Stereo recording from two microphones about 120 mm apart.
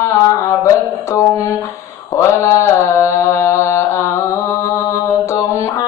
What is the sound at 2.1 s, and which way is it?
Mantra, 25° left (ahead or behind).